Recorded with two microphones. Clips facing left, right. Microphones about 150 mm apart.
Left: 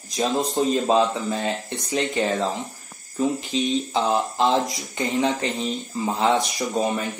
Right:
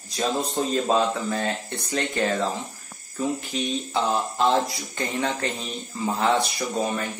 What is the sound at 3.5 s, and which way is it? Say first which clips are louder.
Speech: left 4 dB; 20° left (ahead or behind).